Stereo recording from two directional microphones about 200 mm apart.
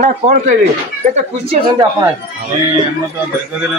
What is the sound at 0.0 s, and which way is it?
Speech, 40° right (ahead or behind).